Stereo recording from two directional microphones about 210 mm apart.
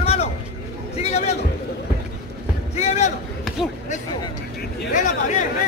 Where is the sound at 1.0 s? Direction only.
30° left (ahead or behind).